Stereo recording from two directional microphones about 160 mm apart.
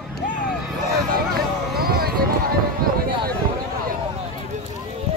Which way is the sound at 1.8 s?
70° right (ahead or behind).